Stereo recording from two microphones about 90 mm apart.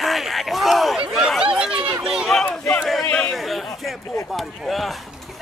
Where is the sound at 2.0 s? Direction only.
10° right (ahead or behind).